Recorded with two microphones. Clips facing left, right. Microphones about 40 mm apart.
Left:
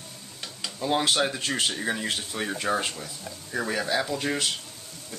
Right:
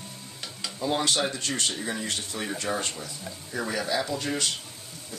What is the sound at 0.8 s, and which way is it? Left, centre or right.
Speech, centre.